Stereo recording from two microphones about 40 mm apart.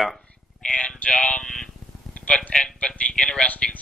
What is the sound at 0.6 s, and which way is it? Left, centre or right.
Speech, left.